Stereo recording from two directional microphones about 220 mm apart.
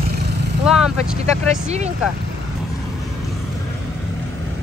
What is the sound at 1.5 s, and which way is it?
Speech, 30° right (ahead or behind).